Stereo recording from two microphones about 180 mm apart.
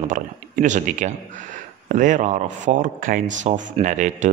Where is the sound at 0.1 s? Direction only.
45° right (ahead or behind).